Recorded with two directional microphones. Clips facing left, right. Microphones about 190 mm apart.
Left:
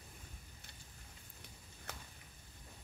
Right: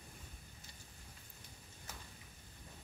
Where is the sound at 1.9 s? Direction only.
65° left (ahead or behind).